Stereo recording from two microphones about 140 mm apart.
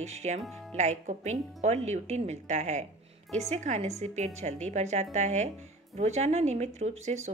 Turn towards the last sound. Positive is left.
turn(degrees=-55)  # may be behind; listen again after turning